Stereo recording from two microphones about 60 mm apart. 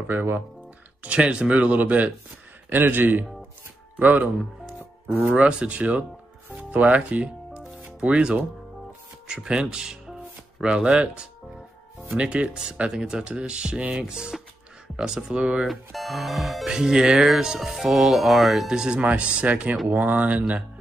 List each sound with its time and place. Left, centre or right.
0.1 s a man's voice: right
1.0 s a man's voice: centre
5.3 s speech: centre
6.5 s music: right
8.1 s speech: centre
14.0 s speech: centre
15.6 s speech: centre
16.6 s speech: centre